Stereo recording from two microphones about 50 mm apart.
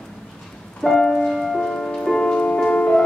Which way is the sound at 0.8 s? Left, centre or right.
Centre.